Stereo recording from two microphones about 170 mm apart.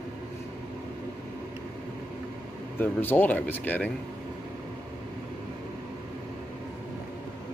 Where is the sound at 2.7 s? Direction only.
10° left (ahead or behind).